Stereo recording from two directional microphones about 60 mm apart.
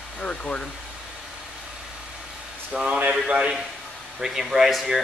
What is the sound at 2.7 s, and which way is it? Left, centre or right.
Speech, centre.